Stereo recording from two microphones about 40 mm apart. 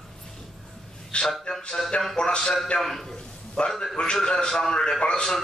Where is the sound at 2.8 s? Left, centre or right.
Centre.